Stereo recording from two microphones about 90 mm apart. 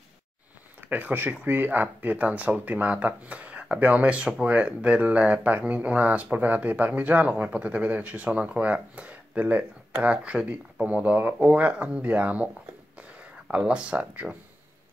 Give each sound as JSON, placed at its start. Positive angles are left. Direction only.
{"t": 0.7, "sound": "speech", "side_deg": -20}
{"t": 13.5, "sound": "speech", "side_deg": -10}